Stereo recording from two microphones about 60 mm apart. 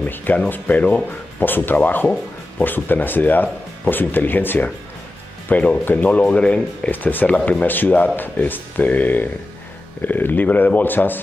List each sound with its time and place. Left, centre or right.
0.0 s speech: left
6.9 s speech: left
7.6 s speech: left